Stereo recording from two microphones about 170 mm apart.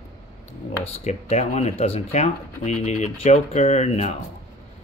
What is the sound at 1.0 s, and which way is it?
Speech, 40° left (ahead or behind).